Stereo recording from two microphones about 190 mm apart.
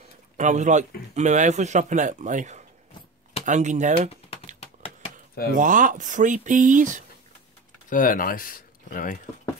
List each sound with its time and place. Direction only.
0.4 s speech: 40° right (ahead or behind)
4.1 s typing: 30° left (ahead or behind)
4.6 s a sound: 30° left (ahead or behind)
5.6 s speech: 45° right (ahead or behind)
7.9 s speech: 45° left (ahead or behind)